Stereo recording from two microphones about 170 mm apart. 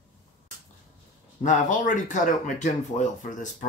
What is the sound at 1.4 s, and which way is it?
Speech, 50° left (ahead or behind).